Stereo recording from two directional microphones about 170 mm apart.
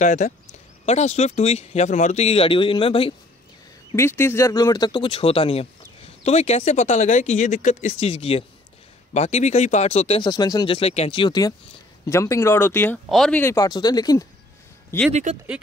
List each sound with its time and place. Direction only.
0.0 s speech: 45° left (ahead or behind)
3.9 s speech: 15° left (ahead or behind)